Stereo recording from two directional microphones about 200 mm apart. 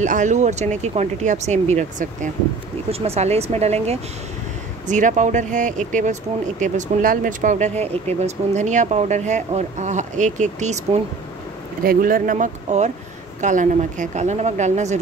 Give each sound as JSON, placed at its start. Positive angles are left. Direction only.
{"t": 0.0, "sound": "speech", "side_deg": -40}